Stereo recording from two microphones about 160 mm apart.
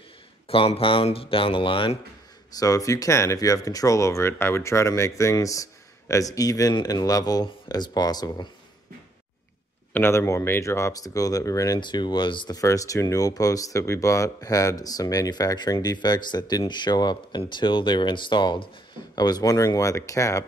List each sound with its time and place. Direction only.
0.5 s speech: 35° left (ahead or behind)
2.5 s speech: 20° left (ahead or behind)
9.9 s speech: 15° left (ahead or behind)